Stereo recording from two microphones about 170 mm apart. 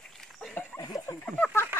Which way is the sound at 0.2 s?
Centre (ahead or behind).